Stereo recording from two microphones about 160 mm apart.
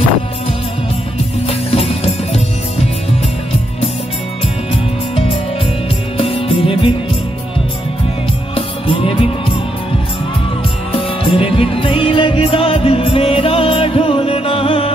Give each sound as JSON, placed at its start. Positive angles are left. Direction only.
{"t": 1.5, "sound": "music", "side_deg": 35}
{"t": 6.1, "sound": "music", "side_deg": 35}
{"t": 8.5, "sound": "music", "side_deg": 35}
{"t": 11.0, "sound": "music", "side_deg": 35}